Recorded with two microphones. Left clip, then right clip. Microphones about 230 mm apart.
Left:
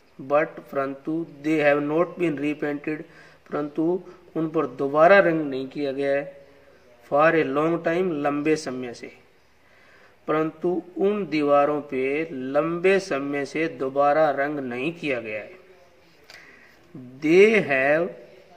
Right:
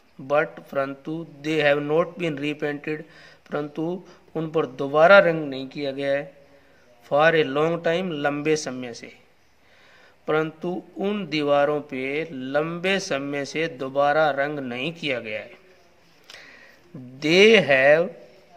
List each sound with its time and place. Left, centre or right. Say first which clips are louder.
0.4 s speech: right 3 dB; right
10.2 s speech: even; right
17.2 s speech: right 1 dB; right